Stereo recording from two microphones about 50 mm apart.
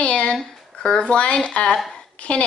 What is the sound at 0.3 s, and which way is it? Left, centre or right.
Speech, centre.